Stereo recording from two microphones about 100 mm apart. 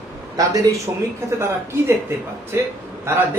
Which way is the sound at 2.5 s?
25° right (ahead or behind).